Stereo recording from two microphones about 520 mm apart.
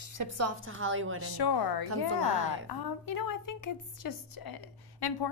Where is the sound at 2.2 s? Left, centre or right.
Right.